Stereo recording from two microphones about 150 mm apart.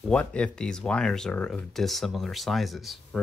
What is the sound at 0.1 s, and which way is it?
Speech, 5° left (ahead or behind).